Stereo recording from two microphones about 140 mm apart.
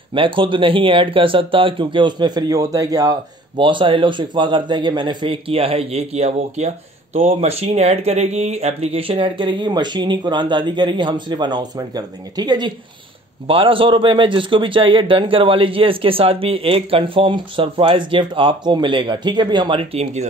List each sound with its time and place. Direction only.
0.1 s a man's voice: 35° right (ahead or behind)